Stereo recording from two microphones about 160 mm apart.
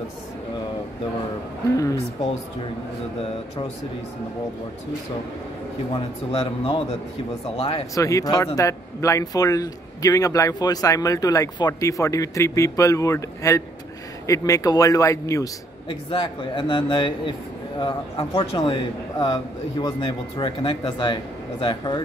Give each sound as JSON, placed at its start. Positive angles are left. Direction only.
{"t": 6.3, "sound": "a man's voice", "side_deg": 35}
{"t": 7.9, "sound": "speech", "side_deg": 20}
{"t": 15.9, "sound": "a man's voice", "side_deg": 35}